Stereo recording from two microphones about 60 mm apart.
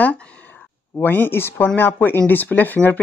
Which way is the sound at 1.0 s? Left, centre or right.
Left.